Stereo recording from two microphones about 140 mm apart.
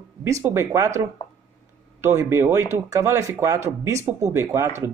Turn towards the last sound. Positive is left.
turn(degrees=-20)  # may be behind; listen again after turning